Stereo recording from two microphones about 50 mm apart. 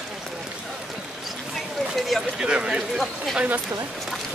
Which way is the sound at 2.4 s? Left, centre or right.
Centre.